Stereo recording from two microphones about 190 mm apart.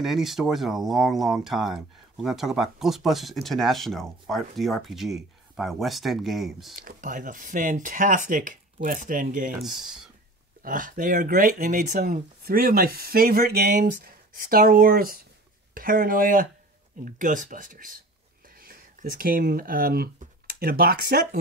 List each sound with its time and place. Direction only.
0.0 s speech: centre (ahead or behind)
6.7 s speech: 45° right (ahead or behind)
9.6 s speech: centre (ahead or behind)
10.6 s speech: 45° right (ahead or behind)